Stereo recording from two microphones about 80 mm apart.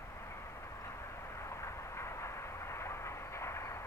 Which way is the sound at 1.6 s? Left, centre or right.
Left.